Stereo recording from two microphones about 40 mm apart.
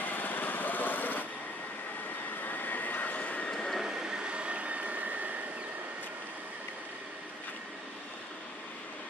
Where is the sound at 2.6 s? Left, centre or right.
Left.